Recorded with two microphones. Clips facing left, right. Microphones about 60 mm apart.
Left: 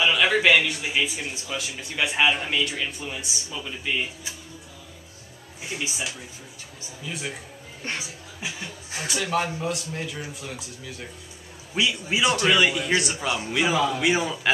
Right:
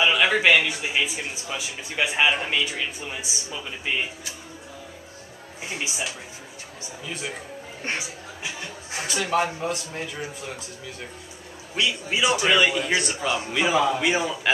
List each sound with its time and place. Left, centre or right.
0.0 s a sound: centre
0.6 s speech: centre
1.6 s speech: centre
5.7 s speech: centre
7.8 s speech: right
9.0 s speech: centre
11.7 s a man's voice: centre
12.2 s a man's voice: centre
13.7 s a man's voice: centre